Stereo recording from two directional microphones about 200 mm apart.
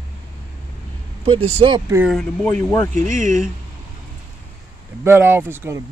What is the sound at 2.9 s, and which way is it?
Speech, 40° right (ahead or behind).